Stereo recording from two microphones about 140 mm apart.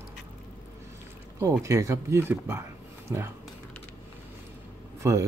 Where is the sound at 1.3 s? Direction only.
20° right (ahead or behind).